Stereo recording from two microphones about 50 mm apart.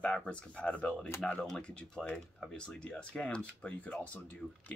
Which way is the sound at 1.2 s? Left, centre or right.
Centre.